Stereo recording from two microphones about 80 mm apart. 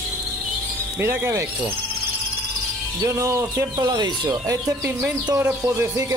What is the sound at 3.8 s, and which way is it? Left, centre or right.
Speech, right.